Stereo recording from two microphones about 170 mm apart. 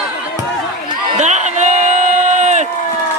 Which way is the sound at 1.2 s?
45° right (ahead or behind).